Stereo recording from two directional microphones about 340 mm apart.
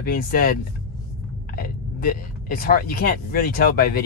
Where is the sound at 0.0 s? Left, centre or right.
Left.